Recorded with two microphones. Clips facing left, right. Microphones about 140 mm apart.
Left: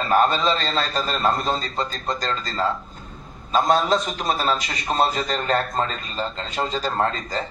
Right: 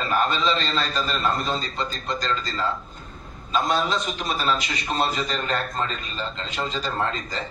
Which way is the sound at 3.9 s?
30° left (ahead or behind).